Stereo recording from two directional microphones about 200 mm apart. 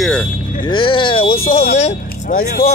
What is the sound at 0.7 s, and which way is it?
A woman's voice, 25° left (ahead or behind).